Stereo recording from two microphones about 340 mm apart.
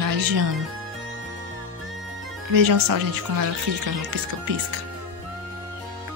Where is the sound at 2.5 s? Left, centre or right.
Right.